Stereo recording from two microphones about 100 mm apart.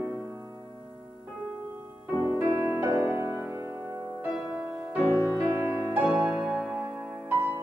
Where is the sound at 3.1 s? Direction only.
30° right (ahead or behind).